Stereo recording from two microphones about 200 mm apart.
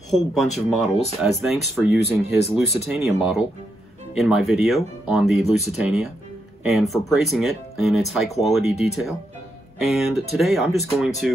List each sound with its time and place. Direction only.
0.1 s speech: centre (ahead or behind)